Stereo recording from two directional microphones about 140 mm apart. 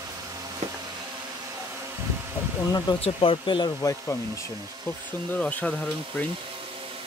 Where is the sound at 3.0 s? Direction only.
40° left (ahead or behind).